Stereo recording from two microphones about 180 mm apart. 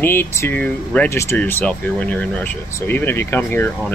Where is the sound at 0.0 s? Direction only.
15° left (ahead or behind).